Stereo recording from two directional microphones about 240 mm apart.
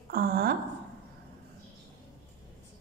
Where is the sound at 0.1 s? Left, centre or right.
Right.